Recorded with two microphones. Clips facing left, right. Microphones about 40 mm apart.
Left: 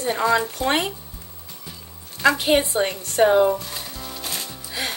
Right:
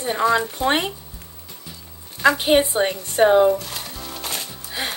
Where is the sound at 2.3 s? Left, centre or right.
Centre.